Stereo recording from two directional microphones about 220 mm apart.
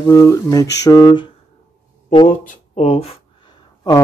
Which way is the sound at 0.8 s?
15° left (ahead or behind).